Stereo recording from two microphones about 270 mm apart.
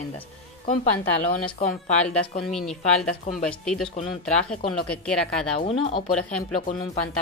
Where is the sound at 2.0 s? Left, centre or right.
Centre.